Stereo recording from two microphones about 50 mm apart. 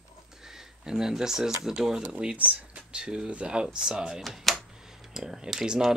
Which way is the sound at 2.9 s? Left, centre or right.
Centre.